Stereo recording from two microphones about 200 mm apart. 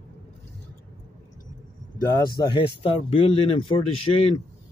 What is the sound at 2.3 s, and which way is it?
Speech, 25° left (ahead or behind).